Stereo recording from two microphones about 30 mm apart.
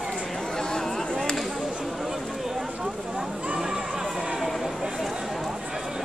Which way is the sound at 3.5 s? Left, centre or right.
Centre.